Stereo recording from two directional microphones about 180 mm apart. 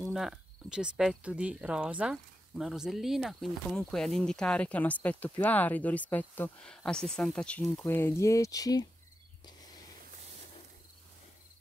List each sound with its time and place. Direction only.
0.1 s speech: centre (ahead or behind); by 8.8 s 20° left (ahead or behind)